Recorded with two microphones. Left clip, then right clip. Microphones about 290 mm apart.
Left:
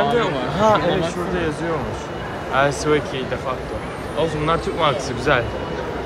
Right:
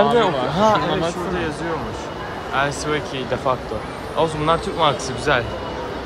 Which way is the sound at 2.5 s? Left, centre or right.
Centre.